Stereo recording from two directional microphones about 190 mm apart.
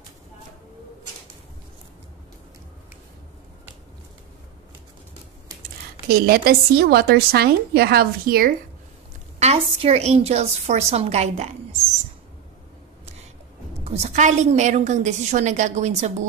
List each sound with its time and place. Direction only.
6.0 s a woman's voice: 50° right (ahead or behind)
9.4 s a woman's voice: 30° right (ahead or behind)
13.8 s a woman's voice: 35° right (ahead or behind)